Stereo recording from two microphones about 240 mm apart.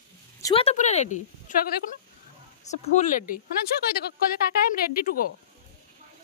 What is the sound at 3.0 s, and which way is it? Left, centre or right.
Speech, left.